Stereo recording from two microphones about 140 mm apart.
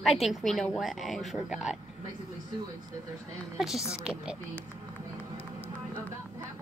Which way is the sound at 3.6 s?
Centre (ahead or behind).